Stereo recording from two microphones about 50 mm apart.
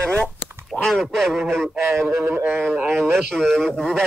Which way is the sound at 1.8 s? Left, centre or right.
Right.